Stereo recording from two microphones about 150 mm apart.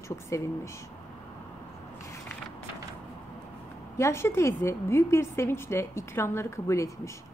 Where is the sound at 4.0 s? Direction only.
15° left (ahead or behind).